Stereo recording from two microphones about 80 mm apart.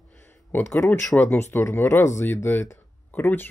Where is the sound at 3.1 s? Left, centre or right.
Left.